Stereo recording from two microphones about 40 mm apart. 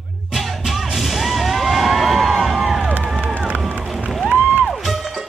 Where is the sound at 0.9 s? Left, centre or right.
Centre.